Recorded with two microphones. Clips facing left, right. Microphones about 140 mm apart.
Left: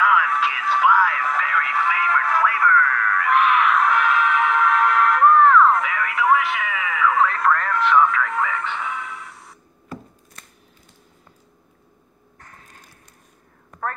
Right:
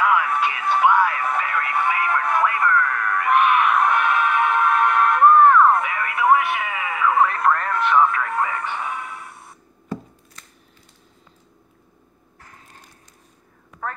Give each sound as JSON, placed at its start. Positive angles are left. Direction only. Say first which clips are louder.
{"t": 0.0, "sound": "music", "louder": "even", "side_deg": -25}